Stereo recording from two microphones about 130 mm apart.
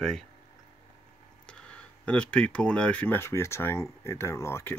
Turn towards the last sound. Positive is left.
turn(degrees=20)  # may be behind; listen again after turning